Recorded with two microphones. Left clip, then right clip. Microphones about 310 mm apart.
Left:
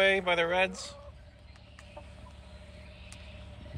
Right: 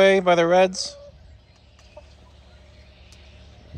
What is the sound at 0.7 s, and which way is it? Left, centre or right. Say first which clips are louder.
Speech: right 12 dB; centre.